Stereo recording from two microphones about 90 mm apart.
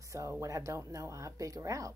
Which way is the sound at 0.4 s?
35° right (ahead or behind).